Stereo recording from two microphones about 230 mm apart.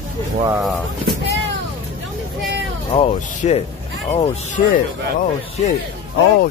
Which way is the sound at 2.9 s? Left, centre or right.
Left.